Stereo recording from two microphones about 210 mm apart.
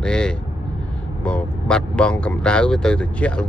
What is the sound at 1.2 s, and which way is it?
Speech, 5° left (ahead or behind).